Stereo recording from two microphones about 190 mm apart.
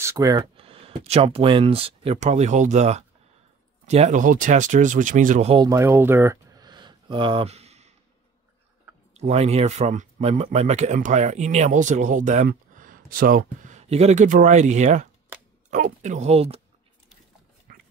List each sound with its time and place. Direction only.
0.0 s speech: 15° right (ahead or behind); by 5.6 s 40° right (ahead or behind)
5.6 s a sound: 15° right (ahead or behind); by 7.9 s 35° right (ahead or behind)
9.1 s speech: 35° right (ahead or behind)
17.7 s dog: 50° right (ahead or behind)